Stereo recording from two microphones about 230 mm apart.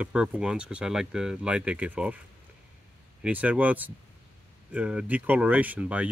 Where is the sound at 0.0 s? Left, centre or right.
Centre.